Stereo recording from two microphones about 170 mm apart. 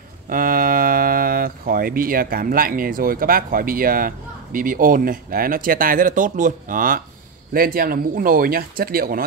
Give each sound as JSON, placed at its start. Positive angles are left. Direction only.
{"t": 0.3, "sound": "speech", "side_deg": -55}